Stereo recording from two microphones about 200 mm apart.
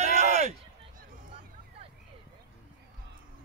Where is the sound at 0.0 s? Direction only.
35° right (ahead or behind).